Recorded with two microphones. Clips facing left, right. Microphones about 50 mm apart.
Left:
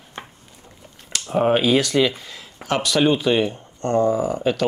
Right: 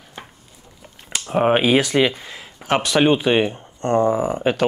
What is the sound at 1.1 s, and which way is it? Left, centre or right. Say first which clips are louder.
Speech: right 1 dB; right.